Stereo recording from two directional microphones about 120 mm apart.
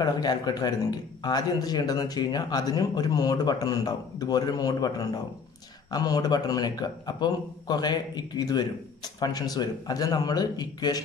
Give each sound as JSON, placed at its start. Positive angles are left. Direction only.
{"t": 0.0, "sound": "a man's voice", "side_deg": 35}